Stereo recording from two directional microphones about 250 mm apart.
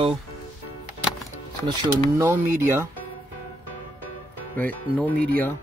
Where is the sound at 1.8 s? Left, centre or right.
Centre.